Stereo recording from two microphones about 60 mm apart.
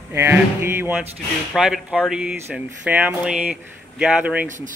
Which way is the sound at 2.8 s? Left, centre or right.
Right.